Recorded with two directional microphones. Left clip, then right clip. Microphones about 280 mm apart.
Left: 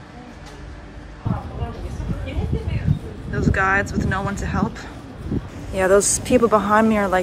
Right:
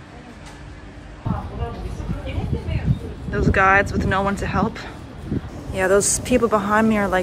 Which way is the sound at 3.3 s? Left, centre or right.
Centre.